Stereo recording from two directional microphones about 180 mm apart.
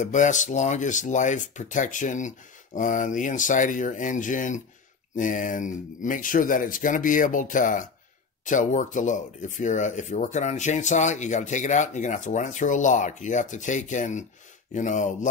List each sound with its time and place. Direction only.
0.0 s speech: 45° left (ahead or behind)